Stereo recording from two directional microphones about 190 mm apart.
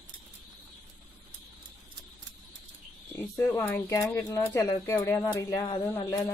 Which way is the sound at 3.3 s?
10° left (ahead or behind).